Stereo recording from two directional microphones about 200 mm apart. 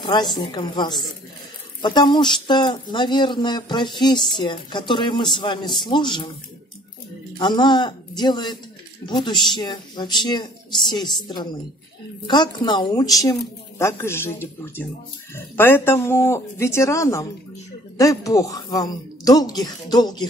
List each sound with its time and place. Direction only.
0.0 s a woman's voice: 20° left (ahead or behind)
7.3 s speech: 20° left (ahead or behind)